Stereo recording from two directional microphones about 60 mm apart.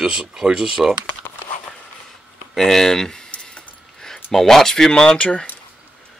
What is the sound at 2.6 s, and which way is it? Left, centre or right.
Speech, centre.